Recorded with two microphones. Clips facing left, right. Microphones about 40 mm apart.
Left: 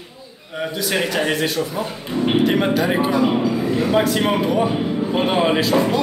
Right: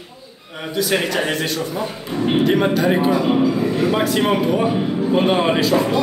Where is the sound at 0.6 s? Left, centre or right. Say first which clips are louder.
Right 1 dB; centre.